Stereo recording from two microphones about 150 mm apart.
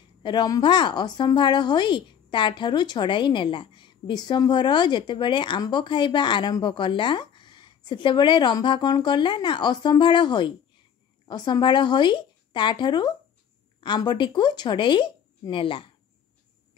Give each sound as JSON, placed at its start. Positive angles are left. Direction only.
{"t": 0.2, "sound": "a woman's voice", "side_deg": 30}